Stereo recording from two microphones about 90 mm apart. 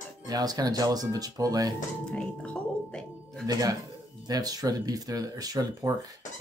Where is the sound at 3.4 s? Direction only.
45° right (ahead or behind).